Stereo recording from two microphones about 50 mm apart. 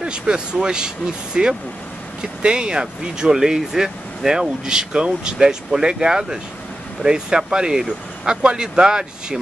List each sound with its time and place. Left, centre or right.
0.0 s speech: centre